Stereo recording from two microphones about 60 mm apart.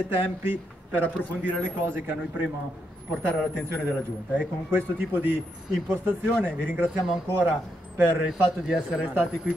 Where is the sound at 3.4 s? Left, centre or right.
Centre.